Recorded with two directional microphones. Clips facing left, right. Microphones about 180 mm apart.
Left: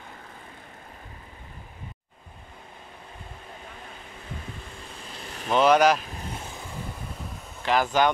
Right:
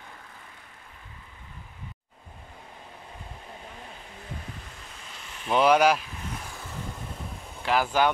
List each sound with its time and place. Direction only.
5.2 s vehicle: 40° left (ahead or behind)
5.5 s speech: 10° right (ahead or behind)
6.1 s vehicle: 25° left (ahead or behind)
7.6 s speech: 5° right (ahead or behind)